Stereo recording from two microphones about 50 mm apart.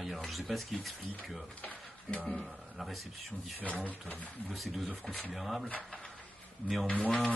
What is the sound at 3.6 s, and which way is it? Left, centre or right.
Speech, left.